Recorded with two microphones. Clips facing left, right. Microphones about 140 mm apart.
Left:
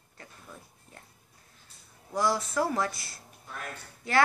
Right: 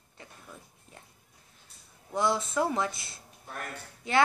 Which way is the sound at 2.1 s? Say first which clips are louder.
Even; 25° right (ahead or behind).